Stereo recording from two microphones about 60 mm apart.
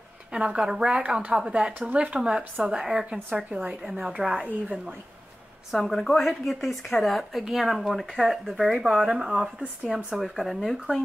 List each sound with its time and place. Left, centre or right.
0.3 s speech: centre
1.7 s speech: right
2.1 s speech: centre
3.3 s speech: right
5.7 s a woman's voice: centre
10.1 s a woman's voice: centre